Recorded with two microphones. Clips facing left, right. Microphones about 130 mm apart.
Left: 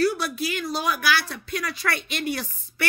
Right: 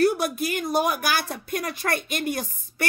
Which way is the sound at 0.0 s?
50° right (ahead or behind).